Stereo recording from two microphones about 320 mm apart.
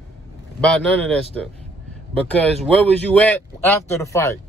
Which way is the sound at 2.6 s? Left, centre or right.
Centre.